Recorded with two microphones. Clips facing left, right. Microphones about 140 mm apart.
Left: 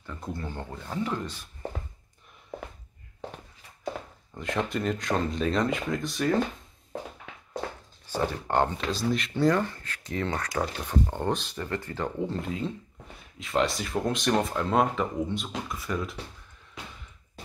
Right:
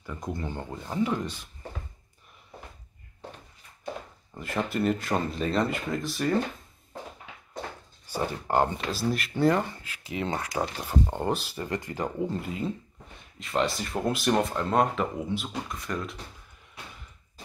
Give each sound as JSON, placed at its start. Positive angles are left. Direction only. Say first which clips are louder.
{"t": 0.0, "sound": "speech", "louder": "right 2 dB", "side_deg": -15}
{"t": 4.4, "sound": "speech", "louder": "right 1 dB", "side_deg": -5}
{"t": 8.1, "sound": "speech", "louder": "even", "side_deg": -5}
{"t": 12.2, "sound": "speech", "louder": "even", "side_deg": -5}